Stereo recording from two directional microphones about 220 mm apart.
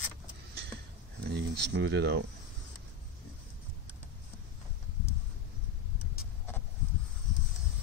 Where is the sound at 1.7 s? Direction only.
50° right (ahead or behind).